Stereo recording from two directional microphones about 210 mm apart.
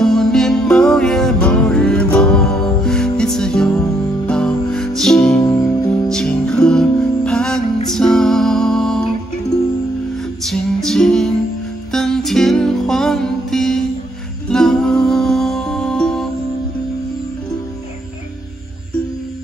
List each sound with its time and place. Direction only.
0.0 s music: centre (ahead or behind)
5.4 s music: 15° left (ahead or behind)
6.0 s music: 5° left (ahead or behind)
10.4 s music: centre (ahead or behind)